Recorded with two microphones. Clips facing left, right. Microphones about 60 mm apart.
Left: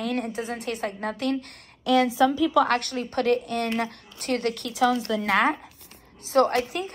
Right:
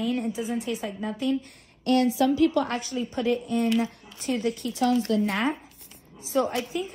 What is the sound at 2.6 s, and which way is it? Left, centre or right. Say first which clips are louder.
A woman's voice: left 4 dB; left.